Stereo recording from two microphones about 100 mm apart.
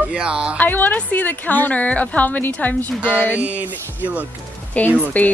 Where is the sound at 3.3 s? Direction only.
15° right (ahead or behind).